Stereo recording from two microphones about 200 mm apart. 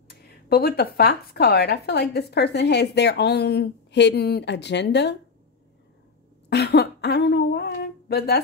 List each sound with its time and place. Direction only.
0.1 s speech: 50° left (ahead or behind)
6.5 s speech: 55° left (ahead or behind)